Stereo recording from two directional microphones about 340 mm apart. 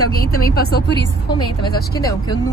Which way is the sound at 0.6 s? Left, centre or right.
Left.